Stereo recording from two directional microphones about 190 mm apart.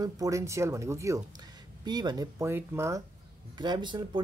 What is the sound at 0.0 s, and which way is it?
Speech, 15° right (ahead or behind).